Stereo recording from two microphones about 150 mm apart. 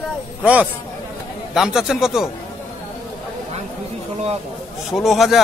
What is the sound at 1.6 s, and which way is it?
Speech, 5° right (ahead or behind).